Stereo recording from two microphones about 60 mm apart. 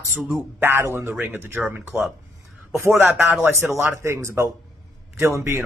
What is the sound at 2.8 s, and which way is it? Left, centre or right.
Speech, right.